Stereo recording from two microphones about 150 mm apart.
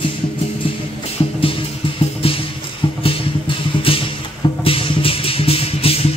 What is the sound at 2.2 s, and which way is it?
Music, 40° left (ahead or behind).